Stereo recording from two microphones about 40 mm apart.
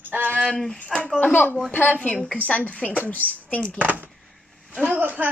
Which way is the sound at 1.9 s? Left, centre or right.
Left.